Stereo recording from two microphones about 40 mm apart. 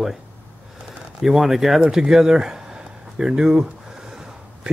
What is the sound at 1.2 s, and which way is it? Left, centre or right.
Speech, centre.